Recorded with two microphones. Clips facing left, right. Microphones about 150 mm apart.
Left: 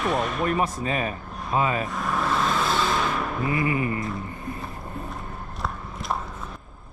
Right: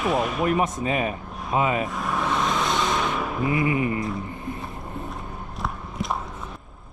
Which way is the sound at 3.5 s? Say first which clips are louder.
Right 2 dB; 20° right (ahead or behind).